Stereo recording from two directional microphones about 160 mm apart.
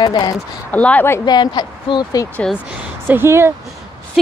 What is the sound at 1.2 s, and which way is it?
Speech, 25° left (ahead or behind).